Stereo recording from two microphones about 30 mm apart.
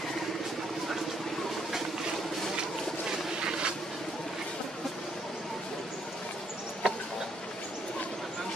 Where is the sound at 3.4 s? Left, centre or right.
Right.